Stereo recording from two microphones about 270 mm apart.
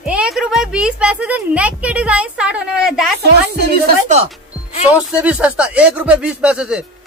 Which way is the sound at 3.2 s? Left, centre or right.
Right.